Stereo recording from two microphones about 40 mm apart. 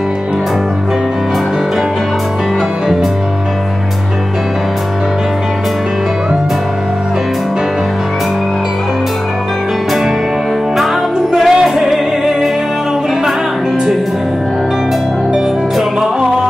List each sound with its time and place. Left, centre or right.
11.3 s music: centre